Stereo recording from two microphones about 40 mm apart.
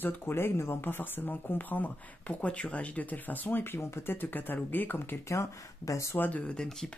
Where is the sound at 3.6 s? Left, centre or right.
Left.